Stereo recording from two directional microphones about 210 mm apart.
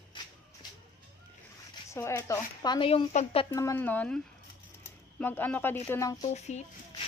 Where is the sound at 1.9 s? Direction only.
10° left (ahead or behind).